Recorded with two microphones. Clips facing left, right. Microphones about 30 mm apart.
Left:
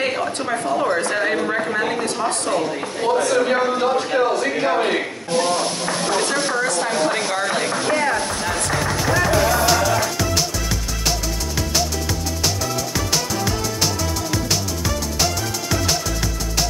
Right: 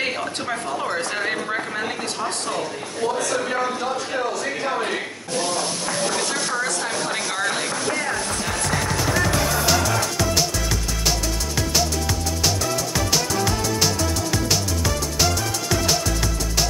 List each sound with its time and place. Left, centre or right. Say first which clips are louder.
0.0 s speech: left 3 dB; centre
4.7 s speech: left 5 dB; left
6.5 s speech: left 4 dB; centre
7.7 s speech: left 5 dB; left
8.5 s music: left 1 dB; centre